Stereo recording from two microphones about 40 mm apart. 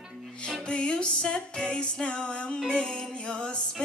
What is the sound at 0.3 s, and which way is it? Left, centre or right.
Music, left.